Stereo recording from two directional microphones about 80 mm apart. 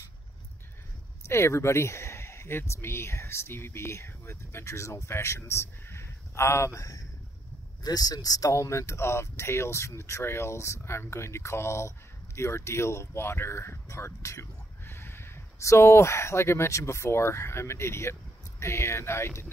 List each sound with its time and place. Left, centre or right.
1.2 s speech: left